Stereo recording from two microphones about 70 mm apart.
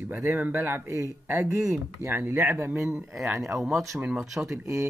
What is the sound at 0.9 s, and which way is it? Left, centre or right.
Speech, right.